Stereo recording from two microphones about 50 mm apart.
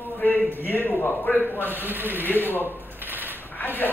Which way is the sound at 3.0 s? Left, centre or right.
Right.